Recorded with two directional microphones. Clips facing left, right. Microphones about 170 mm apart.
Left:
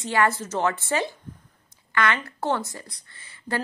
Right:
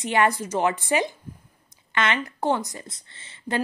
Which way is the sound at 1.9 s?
20° right (ahead or behind).